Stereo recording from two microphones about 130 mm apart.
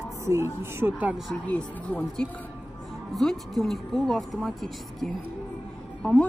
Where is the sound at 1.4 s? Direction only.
10° left (ahead or behind).